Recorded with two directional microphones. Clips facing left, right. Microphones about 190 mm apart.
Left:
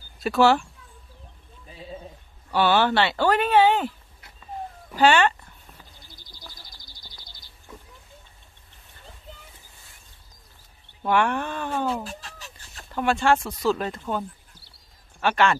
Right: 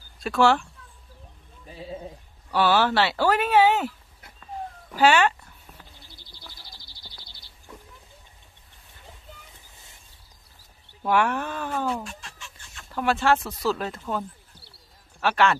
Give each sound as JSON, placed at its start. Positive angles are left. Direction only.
{"t": 0.2, "sound": "speech", "side_deg": 5}
{"t": 2.5, "sound": "speech", "side_deg": 0}
{"t": 4.9, "sound": "speech", "side_deg": -5}
{"t": 6.0, "sound": "bird", "side_deg": 45}
{"t": 11.0, "sound": "speech", "side_deg": -5}
{"t": 11.7, "sound": "chicken", "side_deg": 30}
{"t": 12.9, "sound": "speech", "side_deg": 0}